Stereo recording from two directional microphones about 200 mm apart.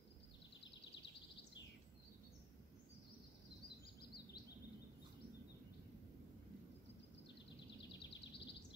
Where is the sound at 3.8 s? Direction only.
50° left (ahead or behind).